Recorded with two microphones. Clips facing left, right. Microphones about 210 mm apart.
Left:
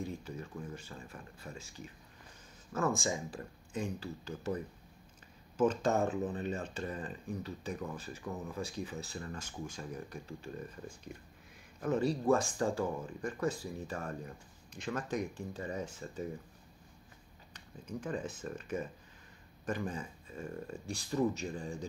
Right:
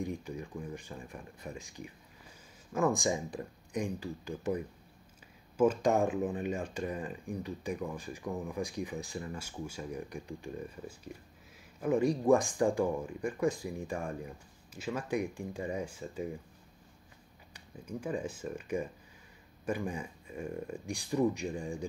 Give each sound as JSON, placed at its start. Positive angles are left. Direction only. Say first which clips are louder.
{"t": 0.0, "sound": "speech", "louder": "right 3 dB", "side_deg": -15}
{"t": 5.6, "sound": "speech", "louder": "right 3 dB", "side_deg": -10}
{"t": 17.5, "sound": "speech", "louder": "right 2 dB", "side_deg": -10}